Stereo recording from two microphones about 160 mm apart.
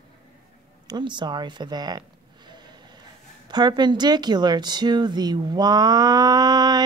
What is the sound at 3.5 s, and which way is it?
A woman's voice, 25° right (ahead or behind).